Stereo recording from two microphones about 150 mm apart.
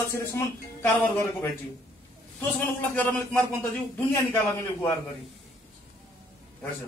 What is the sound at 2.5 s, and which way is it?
A man's voice, 10° left (ahead or behind).